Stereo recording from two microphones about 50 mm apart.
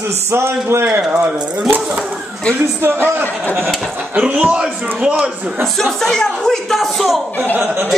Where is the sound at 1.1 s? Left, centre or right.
Right.